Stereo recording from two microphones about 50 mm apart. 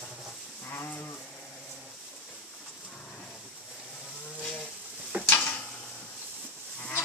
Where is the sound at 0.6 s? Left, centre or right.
Left.